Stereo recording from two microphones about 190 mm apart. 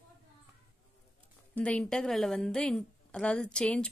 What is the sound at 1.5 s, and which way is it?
A woman's voice, 5° left (ahead or behind).